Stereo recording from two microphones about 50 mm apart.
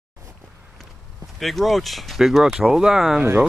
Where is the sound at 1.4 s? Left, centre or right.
Centre.